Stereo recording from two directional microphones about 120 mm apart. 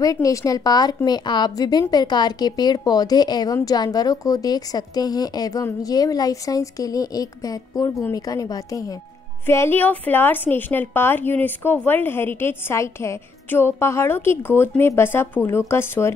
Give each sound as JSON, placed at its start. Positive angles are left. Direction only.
{"t": 0.0, "sound": "a woman's voice", "side_deg": 30}